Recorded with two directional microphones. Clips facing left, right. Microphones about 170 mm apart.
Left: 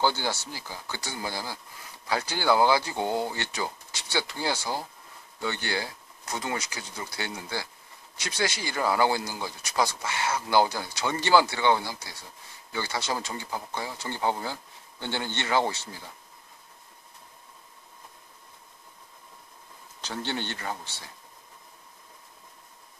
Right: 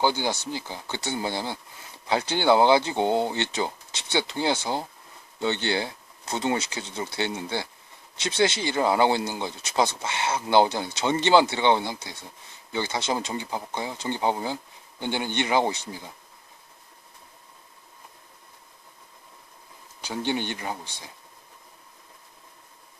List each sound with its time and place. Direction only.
0.0 s speech: 15° right (ahead or behind)
20.0 s speech: 15° right (ahead or behind)